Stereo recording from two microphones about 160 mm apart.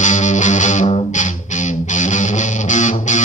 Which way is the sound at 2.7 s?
50° left (ahead or behind).